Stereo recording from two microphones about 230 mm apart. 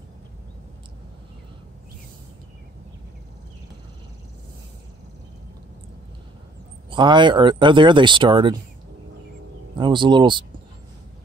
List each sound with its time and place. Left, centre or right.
6.9 s speech: right
9.8 s speech: right